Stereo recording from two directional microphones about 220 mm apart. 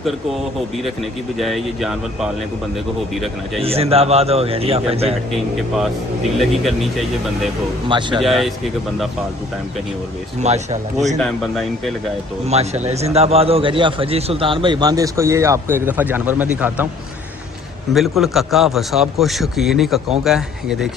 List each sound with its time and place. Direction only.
1.4 s a man's voice: centre (ahead or behind)
3.6 s a man's voice: 25° right (ahead or behind)
8.2 s a man's voice: centre (ahead or behind)
10.4 s a man's voice: 30° right (ahead or behind)
11.1 s a man's voice: centre (ahead or behind)
12.8 s a man's voice: 30° right (ahead or behind); by 16.8 s 5° right (ahead or behind)
17.9 s a man's voice: centre (ahead or behind)